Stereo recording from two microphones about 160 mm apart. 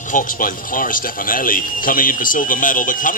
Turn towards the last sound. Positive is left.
turn(degrees=55)  # may be behind; listen again after turning